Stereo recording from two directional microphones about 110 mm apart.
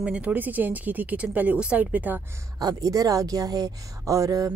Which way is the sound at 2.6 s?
35° right (ahead or behind).